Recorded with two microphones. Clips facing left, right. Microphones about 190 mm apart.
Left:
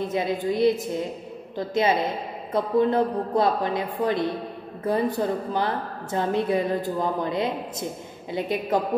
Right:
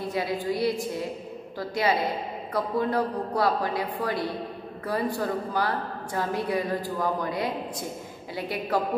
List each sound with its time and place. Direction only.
0.1 s a man's voice: 20° left (ahead or behind)